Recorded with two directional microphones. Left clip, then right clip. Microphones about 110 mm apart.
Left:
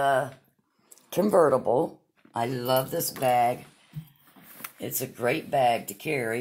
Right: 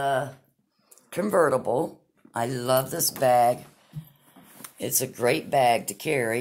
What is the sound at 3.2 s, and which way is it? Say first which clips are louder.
Speech: right 3 dB; 15° right (ahead or behind).